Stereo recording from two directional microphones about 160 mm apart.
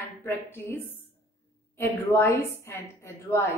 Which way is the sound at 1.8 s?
15° left (ahead or behind).